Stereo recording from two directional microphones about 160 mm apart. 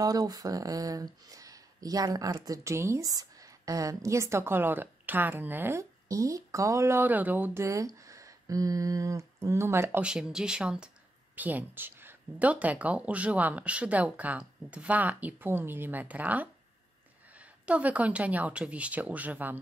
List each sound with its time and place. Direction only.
0.0 s speech: 25° right (ahead or behind)
10.0 s speech: 5° right (ahead or behind)